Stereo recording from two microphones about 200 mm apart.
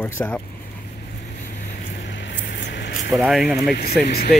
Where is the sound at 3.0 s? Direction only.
5° right (ahead or behind).